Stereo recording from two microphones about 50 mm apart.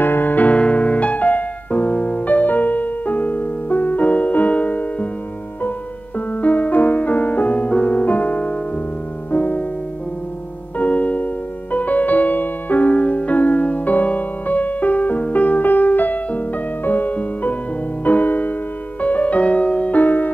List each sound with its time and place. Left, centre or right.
0.0 s piano: left
6.1 s music: left
10.8 s music: left
20.0 s music: left